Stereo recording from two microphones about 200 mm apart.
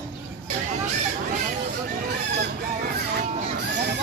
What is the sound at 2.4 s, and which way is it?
Fowl, 55° right (ahead or behind).